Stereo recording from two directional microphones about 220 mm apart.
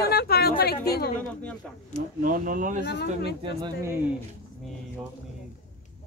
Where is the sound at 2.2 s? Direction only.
40° right (ahead or behind).